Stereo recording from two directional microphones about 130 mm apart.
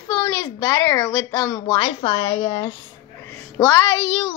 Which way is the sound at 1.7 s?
40° left (ahead or behind).